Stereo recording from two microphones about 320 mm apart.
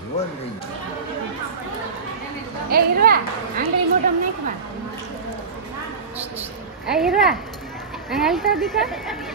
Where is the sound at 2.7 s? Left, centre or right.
Right.